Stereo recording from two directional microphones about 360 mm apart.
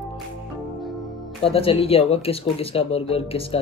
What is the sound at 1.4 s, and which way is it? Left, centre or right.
Speech, centre.